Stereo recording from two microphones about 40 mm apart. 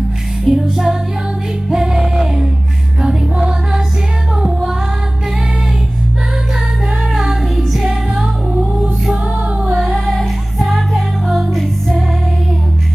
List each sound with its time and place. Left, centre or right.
0.5 s music: centre
3.3 s music: centre
7.2 s music: centre
10.6 s music: centre